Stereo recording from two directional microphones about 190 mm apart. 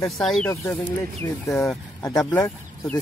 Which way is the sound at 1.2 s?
15° left (ahead or behind).